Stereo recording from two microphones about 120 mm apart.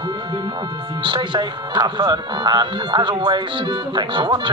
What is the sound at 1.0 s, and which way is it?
Speech, 40° right (ahead or behind).